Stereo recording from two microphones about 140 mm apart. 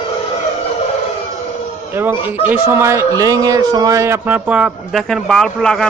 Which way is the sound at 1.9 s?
15° right (ahead or behind).